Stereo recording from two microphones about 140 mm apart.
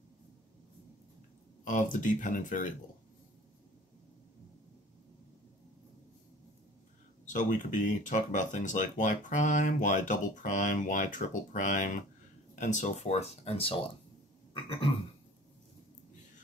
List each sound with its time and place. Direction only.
1.6 s speech: 65° left (ahead or behind)
7.2 s speech: 65° left (ahead or behind); by 13.7 s 45° left (ahead or behind)
14.5 s a sound: 40° left (ahead or behind)